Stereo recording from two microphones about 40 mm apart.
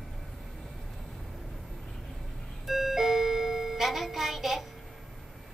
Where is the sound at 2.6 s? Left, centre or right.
Centre.